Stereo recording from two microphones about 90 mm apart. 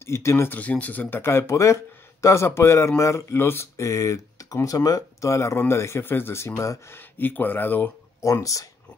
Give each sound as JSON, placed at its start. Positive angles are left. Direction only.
{"t": 0.0, "sound": "speech", "side_deg": 30}
{"t": 0.6, "sound": "speech", "side_deg": 15}
{"t": 7.0, "sound": "speech", "side_deg": 20}
{"t": 8.2, "sound": "speech", "side_deg": 35}